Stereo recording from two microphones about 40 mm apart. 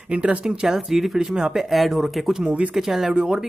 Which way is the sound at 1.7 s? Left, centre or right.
Centre.